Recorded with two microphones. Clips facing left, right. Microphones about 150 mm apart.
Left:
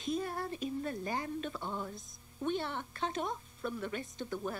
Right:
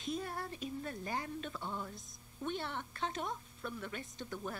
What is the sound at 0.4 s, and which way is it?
A woman's voice, 20° left (ahead or behind).